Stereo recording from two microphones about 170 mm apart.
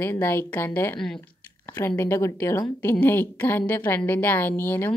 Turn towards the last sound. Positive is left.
turn(degrees=10)  # may be behind; listen again after turning